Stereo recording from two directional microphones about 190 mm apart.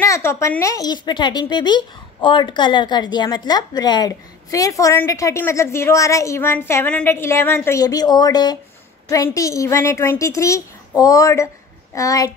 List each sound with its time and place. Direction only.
0.0 s speech: 15° left (ahead or behind)